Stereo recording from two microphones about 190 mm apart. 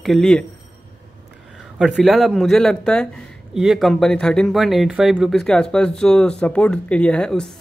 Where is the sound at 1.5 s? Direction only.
Centre (ahead or behind).